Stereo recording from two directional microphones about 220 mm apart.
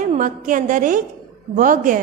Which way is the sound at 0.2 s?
35° right (ahead or behind).